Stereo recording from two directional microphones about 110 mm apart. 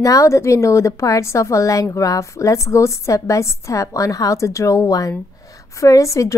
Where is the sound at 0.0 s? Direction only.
30° left (ahead or behind).